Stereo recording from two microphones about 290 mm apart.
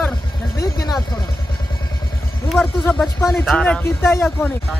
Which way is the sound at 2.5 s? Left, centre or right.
Centre.